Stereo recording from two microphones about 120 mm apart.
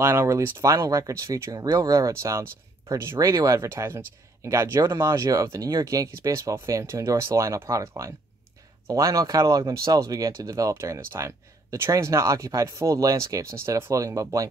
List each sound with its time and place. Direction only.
0.0 s speech: 20° right (ahead or behind)